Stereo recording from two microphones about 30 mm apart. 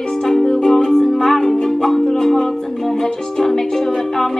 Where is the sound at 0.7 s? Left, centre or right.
Centre.